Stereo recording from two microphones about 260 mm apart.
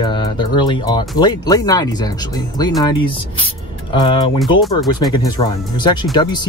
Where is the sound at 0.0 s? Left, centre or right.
Centre.